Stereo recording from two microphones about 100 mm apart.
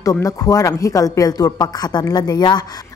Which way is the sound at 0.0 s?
35° left (ahead or behind).